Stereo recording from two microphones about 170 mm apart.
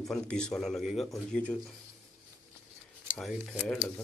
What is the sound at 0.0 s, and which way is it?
Speech, 5° left (ahead or behind).